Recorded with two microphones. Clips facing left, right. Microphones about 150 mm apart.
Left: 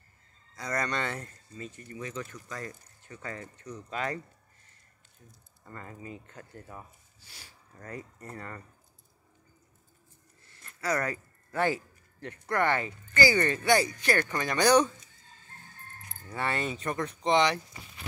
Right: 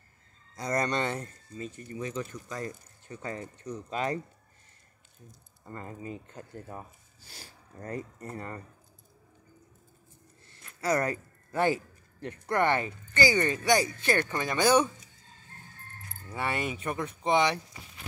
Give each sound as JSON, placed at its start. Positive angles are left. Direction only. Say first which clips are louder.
{"t": 0.6, "sound": "speech", "louder": "right 3 dB", "side_deg": -25}
{"t": 5.7, "sound": "speech", "louder": "right 3 dB", "side_deg": -25}
{"t": 10.8, "sound": "speech", "louder": "right 3 dB", "side_deg": -25}
{"t": 14.6, "sound": "speech", "louder": "left 1 dB", "side_deg": -5}
{"t": 16.3, "sound": "speech", "louder": "even", "side_deg": -15}